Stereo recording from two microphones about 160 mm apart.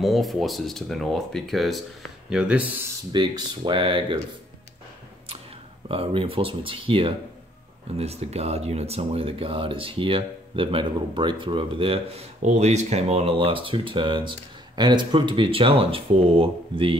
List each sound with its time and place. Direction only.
0.0 s speech: centre (ahead or behind)
3.1 s speech: 30° right (ahead or behind)
5.9 s speech: 35° right (ahead or behind)
12.4 s speech: 45° right (ahead or behind)